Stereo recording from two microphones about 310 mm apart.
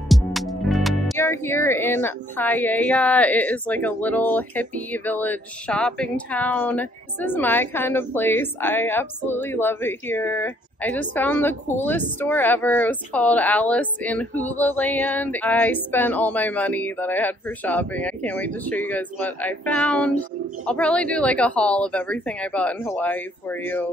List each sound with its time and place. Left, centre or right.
0.1 s a woman's voice: centre